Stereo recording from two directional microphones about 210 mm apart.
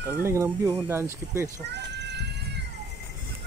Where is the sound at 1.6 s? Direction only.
55° right (ahead or behind).